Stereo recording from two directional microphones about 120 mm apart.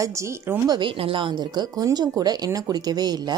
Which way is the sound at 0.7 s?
50° right (ahead or behind).